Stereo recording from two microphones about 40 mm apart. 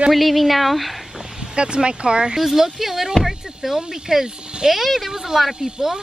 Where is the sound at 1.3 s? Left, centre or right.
Right.